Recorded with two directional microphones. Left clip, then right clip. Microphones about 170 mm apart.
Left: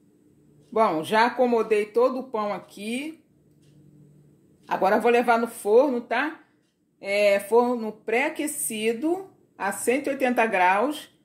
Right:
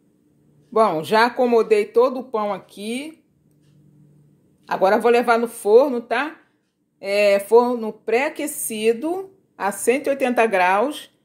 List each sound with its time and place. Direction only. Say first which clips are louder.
0.7 s a woman's voice: right 4 dB; 40° right (ahead or behind)
4.6 s a woman's voice: right 4 dB; 35° right (ahead or behind)